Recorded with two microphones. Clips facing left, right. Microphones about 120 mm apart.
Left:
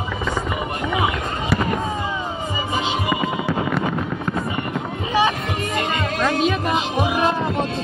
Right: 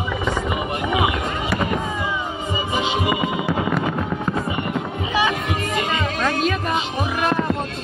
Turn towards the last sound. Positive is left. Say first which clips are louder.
# left 2 dB
turn(degrees=5)  # may be behind; listen again after turning